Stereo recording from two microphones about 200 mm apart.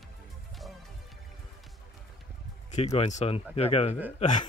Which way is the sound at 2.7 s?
35° left (ahead or behind).